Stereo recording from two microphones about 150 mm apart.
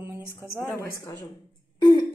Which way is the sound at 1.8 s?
30° left (ahead or behind).